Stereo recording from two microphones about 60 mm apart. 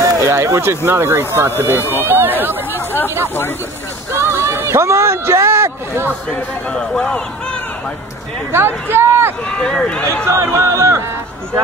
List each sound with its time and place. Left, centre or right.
0.0 s speech: right
1.8 s speech: left
2.0 s speech: right
2.7 s speech: left
4.1 s speech: right
6.7 s speech: centre
8.5 s speech: right
8.9 s run: right
9.6 s speech: centre
10.2 s speech: right